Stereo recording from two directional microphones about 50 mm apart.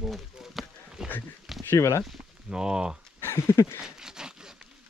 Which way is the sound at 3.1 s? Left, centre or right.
Left.